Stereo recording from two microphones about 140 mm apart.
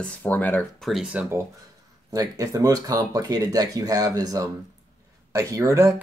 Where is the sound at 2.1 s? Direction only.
25° right (ahead or behind).